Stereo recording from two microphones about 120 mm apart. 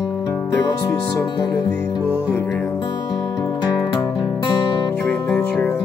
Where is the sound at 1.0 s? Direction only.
30° left (ahead or behind).